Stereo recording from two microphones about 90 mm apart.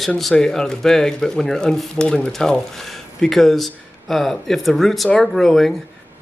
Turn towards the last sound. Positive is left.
turn(degrees=5)  # may be behind; listen again after turning